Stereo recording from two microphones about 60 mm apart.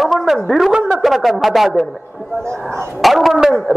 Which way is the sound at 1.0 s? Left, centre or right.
Centre.